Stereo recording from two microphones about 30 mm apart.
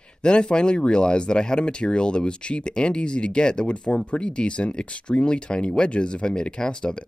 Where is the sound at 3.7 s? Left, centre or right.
Left.